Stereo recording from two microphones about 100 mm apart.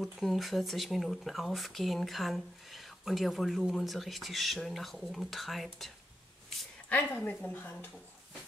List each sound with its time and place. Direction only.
0.0 s speech: centre (ahead or behind)
6.9 s a woman's voice: 15° left (ahead or behind)